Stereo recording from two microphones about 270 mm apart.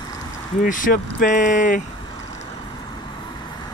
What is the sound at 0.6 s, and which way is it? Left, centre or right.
Speech, left.